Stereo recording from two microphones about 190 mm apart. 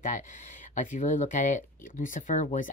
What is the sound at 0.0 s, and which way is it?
Speech, 40° left (ahead or behind).